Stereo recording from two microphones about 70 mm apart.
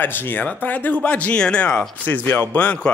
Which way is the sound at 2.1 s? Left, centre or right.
Left.